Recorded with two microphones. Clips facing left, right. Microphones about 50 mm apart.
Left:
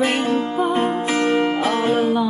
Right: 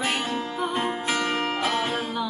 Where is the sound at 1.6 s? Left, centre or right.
Left.